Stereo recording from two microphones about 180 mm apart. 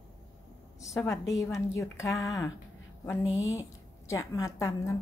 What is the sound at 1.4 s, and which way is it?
A woman's voice, 15° left (ahead or behind).